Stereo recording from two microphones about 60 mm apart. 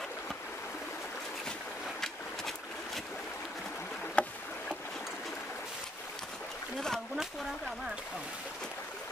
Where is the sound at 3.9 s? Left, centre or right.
Centre.